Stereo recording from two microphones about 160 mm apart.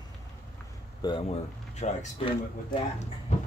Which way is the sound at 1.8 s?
45° left (ahead or behind).